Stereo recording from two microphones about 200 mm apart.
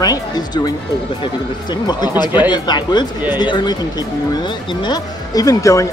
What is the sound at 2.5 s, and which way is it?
Speech, 20° left (ahead or behind).